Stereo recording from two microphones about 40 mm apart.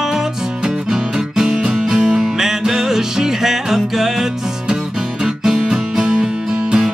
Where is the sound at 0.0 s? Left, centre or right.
Centre.